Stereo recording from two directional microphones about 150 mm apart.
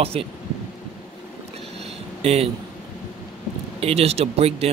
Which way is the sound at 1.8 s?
45° right (ahead or behind).